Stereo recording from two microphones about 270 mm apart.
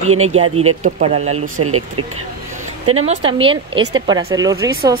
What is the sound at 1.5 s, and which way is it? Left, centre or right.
Speech, right.